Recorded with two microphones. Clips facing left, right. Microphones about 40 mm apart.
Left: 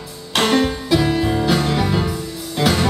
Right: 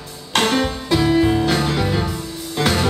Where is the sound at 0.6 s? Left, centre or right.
Centre.